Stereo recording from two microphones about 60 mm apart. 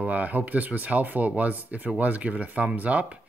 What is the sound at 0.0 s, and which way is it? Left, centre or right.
Speech, right.